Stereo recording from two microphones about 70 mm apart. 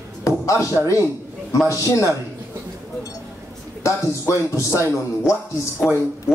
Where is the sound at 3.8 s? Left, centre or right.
Left.